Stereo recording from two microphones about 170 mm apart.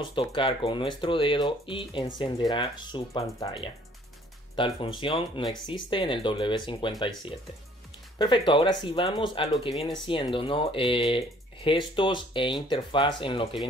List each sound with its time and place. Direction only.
0.0 s speech: 30° left (ahead or behind)